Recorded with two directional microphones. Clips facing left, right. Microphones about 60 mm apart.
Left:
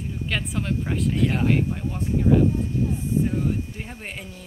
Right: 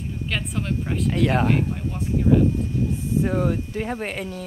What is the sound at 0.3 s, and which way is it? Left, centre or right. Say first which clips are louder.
Speech: even; centre.